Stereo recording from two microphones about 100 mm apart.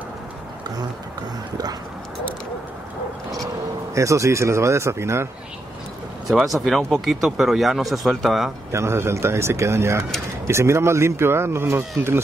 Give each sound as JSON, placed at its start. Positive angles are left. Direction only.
{"t": 3.9, "sound": "speech", "side_deg": -30}
{"t": 6.2, "sound": "speech", "side_deg": 0}
{"t": 8.7, "sound": "speech", "side_deg": -25}